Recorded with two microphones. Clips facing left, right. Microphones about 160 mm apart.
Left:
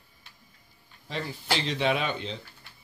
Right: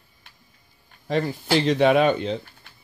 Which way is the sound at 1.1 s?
50° right (ahead or behind).